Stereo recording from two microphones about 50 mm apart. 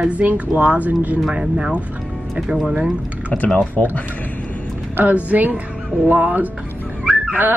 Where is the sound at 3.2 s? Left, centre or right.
Left.